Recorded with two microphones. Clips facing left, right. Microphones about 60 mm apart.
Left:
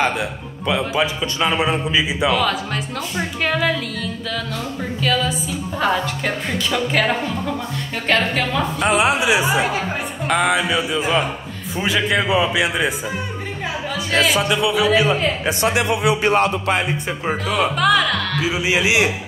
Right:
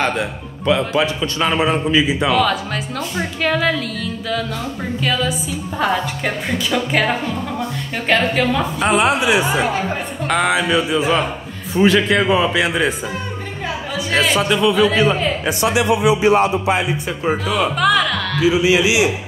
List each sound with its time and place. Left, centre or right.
0.0 s a man's voice: centre
5.8 s a woman's voice: centre
8.1 s a woman's voice: centre
8.9 s a woman's voice: centre
14.1 s a woman's voice: centre
15.7 s speech: left
17.2 s a woman's voice: centre
18.5 s speech: left